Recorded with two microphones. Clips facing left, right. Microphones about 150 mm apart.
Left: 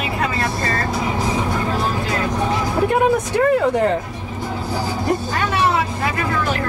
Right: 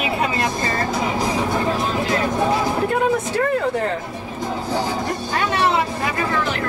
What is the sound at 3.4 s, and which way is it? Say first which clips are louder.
Speech: left 7 dB; 20° left (ahead or behind).